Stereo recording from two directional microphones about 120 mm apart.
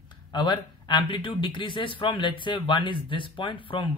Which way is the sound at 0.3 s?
40° left (ahead or behind).